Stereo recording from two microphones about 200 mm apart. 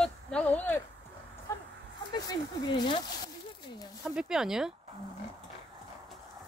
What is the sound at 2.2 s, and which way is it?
Speech, 20° left (ahead or behind).